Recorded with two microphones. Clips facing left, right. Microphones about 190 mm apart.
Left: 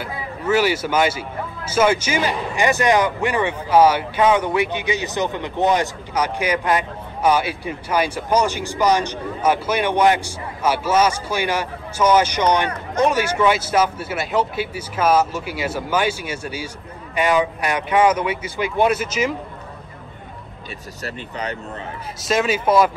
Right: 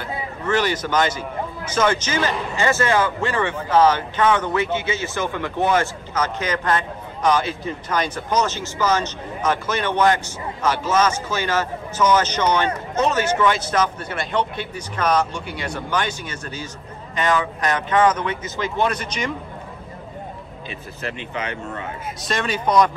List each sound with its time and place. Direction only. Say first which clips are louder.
0.0 s speech: left 1 dB; 10° left (ahead or behind)
21.0 s speech: even; 40° left (ahead or behind)
22.2 s speech: left 4 dB; 5° left (ahead or behind)